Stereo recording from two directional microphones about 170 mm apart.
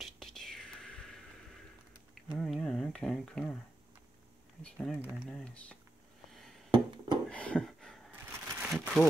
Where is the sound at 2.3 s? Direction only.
5° left (ahead or behind).